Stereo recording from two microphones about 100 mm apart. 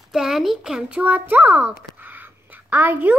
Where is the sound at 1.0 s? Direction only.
20° right (ahead or behind).